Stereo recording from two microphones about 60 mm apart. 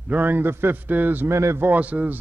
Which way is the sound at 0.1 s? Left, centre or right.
Right.